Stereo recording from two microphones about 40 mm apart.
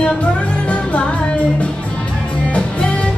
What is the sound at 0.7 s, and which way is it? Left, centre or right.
Music, left.